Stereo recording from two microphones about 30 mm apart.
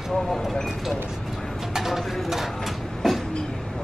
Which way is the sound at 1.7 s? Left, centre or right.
Centre.